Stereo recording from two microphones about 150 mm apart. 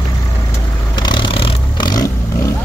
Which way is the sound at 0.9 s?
30° left (ahead or behind).